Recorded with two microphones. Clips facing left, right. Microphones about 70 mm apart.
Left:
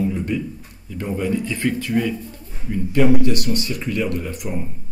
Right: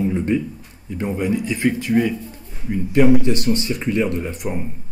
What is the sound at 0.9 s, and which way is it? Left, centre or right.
Speech, centre.